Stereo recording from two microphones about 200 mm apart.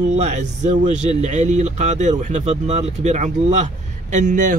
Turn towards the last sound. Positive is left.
turn(degrees=-40)  # may be behind; listen again after turning